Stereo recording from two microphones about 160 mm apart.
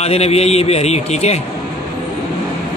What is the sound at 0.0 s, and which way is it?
A man's voice, 40° left (ahead or behind).